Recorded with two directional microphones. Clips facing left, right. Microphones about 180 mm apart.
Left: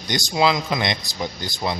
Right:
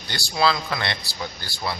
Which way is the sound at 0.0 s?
15° left (ahead or behind).